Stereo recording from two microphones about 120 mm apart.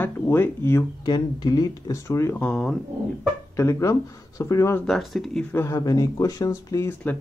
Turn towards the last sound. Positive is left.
turn(degrees=20)  # may be behind; listen again after turning